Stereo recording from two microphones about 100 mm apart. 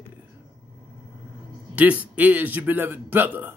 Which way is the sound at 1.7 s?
15° right (ahead or behind).